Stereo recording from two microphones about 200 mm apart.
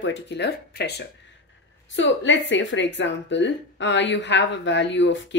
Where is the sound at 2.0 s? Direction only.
65° left (ahead or behind).